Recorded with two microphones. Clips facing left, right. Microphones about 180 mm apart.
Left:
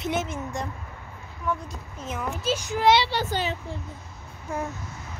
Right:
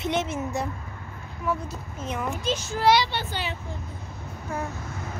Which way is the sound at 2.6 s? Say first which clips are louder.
Left 1 dB; 20° left (ahead or behind).